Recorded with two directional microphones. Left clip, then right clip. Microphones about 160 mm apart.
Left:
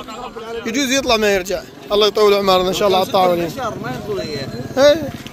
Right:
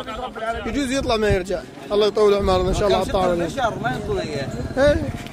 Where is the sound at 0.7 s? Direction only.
20° left (ahead or behind).